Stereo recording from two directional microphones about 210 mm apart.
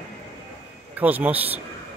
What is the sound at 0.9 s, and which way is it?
Speech, 10° right (ahead or behind).